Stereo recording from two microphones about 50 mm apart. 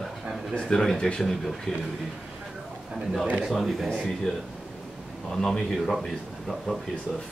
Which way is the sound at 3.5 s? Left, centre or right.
Centre.